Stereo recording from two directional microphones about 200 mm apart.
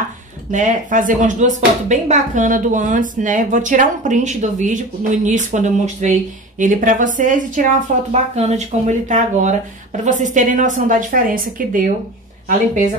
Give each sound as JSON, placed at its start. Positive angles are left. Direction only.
{"t": 0.5, "sound": "speech", "side_deg": -40}